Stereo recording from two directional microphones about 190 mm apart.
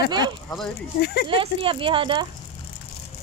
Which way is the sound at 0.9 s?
60° left (ahead or behind).